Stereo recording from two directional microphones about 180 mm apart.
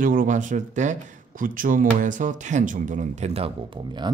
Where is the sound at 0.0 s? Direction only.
50° right (ahead or behind).